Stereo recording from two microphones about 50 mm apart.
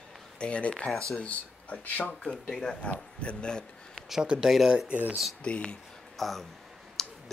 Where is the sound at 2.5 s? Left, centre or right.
Centre.